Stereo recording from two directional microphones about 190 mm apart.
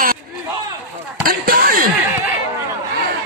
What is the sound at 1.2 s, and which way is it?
Basketball bounce, 50° right (ahead or behind).